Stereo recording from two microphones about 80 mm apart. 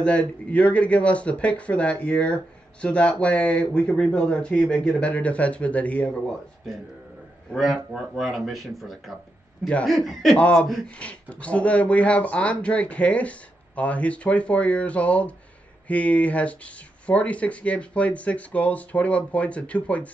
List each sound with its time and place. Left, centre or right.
0.0 s speech: centre
7.5 s speech: centre
10.3 s speech: centre